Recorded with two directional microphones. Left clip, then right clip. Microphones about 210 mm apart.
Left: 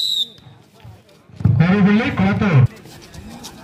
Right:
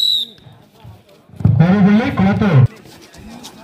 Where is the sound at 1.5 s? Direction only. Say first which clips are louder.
Right 2 dB; 40° right (ahead or behind).